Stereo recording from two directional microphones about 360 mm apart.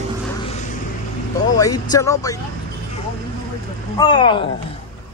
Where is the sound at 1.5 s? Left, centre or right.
Centre.